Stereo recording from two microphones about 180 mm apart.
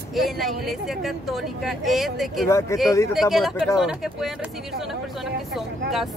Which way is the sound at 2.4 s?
15° left (ahead or behind).